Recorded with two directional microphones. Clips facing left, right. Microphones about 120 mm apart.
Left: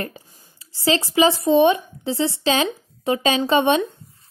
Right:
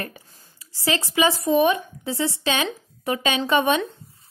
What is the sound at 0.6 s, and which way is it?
A woman's voice, 25° left (ahead or behind).